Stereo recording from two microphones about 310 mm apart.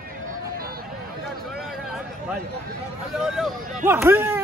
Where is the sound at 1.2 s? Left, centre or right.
Centre.